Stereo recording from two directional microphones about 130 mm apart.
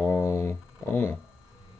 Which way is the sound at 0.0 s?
20° left (ahead or behind).